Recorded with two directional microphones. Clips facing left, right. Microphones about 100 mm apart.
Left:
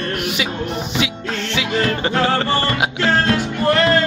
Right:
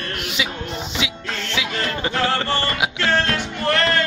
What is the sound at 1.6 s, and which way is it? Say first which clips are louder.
Speech: left 6 dB; 60° left (ahead or behind).